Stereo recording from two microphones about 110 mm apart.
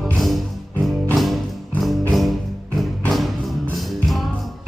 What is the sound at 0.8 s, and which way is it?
Music, centre (ahead or behind).